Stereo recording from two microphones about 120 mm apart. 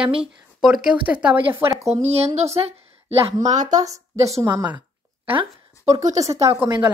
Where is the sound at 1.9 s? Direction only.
65° right (ahead or behind).